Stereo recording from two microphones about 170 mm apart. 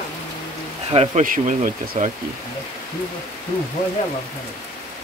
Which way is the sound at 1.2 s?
50° right (ahead or behind).